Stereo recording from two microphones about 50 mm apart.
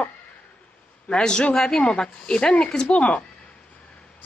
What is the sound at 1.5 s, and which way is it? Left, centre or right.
Speech, centre.